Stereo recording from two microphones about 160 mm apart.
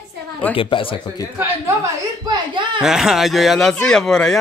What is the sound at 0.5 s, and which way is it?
Speech, 35° left (ahead or behind).